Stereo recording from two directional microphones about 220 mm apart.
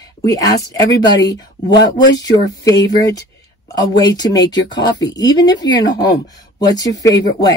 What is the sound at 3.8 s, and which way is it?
A woman's voice, 15° left (ahead or behind).